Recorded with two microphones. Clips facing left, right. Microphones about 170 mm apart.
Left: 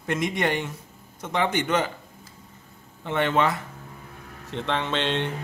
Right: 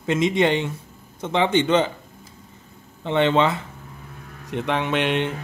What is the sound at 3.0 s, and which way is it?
Speech, 25° right (ahead or behind).